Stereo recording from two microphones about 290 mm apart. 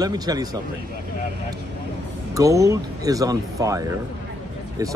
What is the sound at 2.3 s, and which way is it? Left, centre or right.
Speech, centre.